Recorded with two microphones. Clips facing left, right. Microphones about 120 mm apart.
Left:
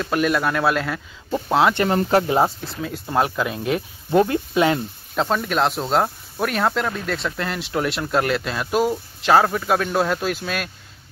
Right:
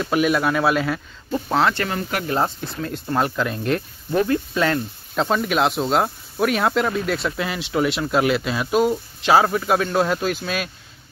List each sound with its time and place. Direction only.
0.0 s speech: 5° right (ahead or behind)
1.3 s speech: 15° left (ahead or behind)
1.9 s speech: 35° left (ahead or behind)
2.2 s speech: 15° left (ahead or behind)
2.6 s speech: 5° left (ahead or behind)
4.1 s speech: 20° left (ahead or behind)
5.1 s speech: centre (ahead or behind)